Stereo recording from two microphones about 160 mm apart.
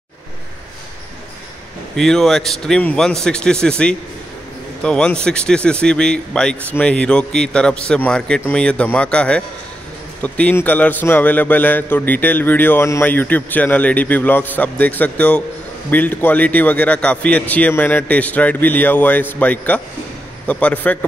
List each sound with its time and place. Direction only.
2.0 s a man's voice: centre (ahead or behind)